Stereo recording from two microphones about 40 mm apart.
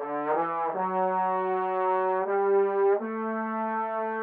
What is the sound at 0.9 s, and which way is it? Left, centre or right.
Brass instrument, centre.